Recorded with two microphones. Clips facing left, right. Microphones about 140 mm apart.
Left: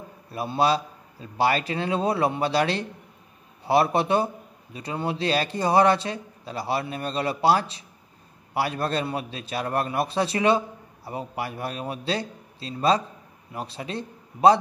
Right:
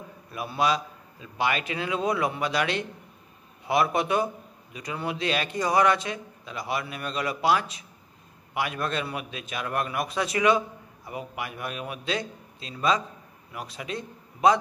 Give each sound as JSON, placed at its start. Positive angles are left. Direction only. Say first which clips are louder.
{"t": 0.3, "sound": "a man's voice", "louder": "left 3 dB", "side_deg": 30}